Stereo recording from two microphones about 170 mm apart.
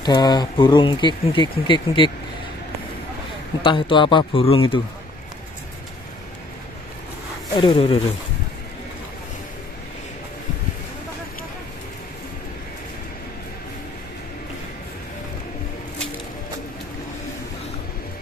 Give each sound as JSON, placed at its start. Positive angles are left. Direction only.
{"t": 0.0, "sound": "speech", "side_deg": 25}
{"t": 3.6, "sound": "speech", "side_deg": 30}
{"t": 7.5, "sound": "speech", "side_deg": 30}